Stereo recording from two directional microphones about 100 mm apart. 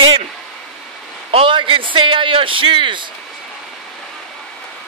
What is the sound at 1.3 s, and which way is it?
A man's voice, 65° right (ahead or behind).